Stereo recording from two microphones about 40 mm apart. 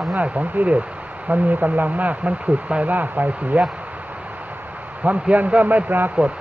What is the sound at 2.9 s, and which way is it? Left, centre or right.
Speech, right.